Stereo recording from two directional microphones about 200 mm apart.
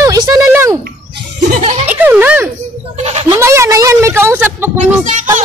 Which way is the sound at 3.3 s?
15° right (ahead or behind).